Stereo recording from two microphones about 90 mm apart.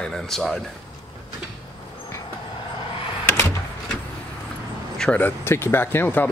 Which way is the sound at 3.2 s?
25° left (ahead or behind).